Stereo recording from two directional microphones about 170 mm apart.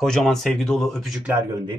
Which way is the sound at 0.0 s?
Centre (ahead or behind).